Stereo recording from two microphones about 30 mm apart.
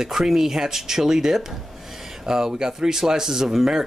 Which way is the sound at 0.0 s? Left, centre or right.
Centre.